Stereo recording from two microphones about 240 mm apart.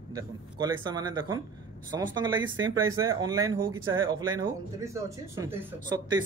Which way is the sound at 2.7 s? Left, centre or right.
Right.